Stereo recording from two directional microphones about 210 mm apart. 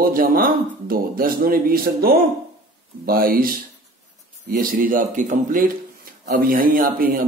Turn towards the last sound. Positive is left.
turn(degrees=-40)  # may be behind; listen again after turning